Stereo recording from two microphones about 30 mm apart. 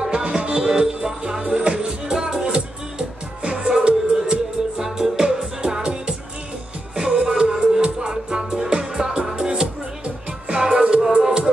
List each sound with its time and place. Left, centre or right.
0.0 s music: right
1.4 s music: right
4.7 s music: centre
7.8 s music: right